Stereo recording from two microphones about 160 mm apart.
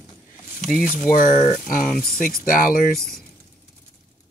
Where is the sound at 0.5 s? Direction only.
Centre (ahead or behind).